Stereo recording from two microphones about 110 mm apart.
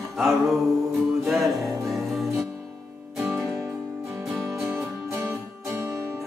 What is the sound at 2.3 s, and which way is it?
Music, 30° right (ahead or behind).